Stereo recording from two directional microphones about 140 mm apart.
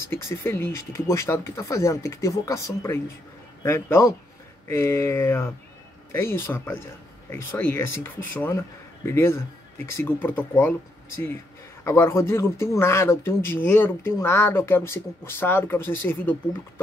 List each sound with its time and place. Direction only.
0.1 s speech: 20° left (ahead or behind)
11.8 s speech: 20° left (ahead or behind)